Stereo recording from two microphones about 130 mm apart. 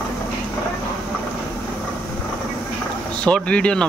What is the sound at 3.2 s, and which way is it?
Speech, 10° left (ahead or behind).